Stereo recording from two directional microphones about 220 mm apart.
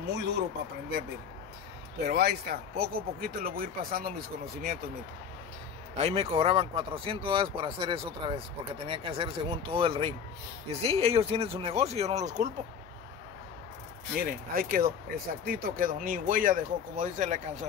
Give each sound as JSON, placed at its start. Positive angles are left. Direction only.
{"t": 0.1, "sound": "speech", "side_deg": -50}
{"t": 2.0, "sound": "speech", "side_deg": -45}
{"t": 5.9, "sound": "speech", "side_deg": -30}
{"t": 14.1, "sound": "speech", "side_deg": -40}